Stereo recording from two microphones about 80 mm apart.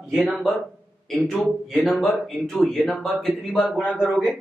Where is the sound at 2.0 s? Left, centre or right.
Centre.